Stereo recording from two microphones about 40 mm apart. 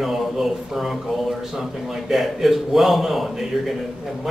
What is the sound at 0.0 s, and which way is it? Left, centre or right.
A man's voice, centre.